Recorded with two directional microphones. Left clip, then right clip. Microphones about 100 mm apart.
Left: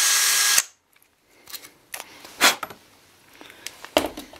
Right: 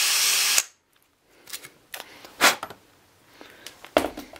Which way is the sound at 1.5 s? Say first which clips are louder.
Left 1 dB; 5° right (ahead or behind).